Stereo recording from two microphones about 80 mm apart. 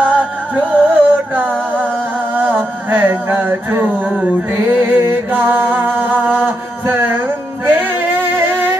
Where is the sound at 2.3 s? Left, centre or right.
Right.